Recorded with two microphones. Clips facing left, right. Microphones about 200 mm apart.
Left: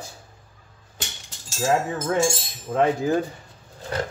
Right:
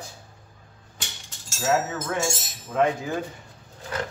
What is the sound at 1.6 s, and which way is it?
Speech, 35° left (ahead or behind).